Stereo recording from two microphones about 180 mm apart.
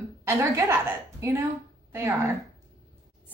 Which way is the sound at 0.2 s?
15° right (ahead or behind).